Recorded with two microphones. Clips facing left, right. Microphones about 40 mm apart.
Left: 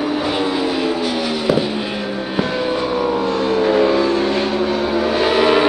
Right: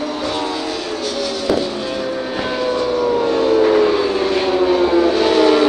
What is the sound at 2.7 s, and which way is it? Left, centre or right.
Vehicle, centre.